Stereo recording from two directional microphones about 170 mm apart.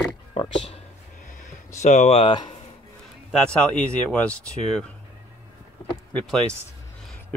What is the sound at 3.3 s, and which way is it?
Speech, 5° left (ahead or behind).